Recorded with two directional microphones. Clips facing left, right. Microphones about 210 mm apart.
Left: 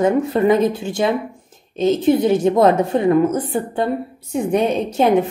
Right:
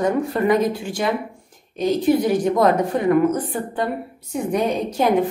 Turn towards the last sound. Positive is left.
turn(degrees=25)  # may be behind; listen again after turning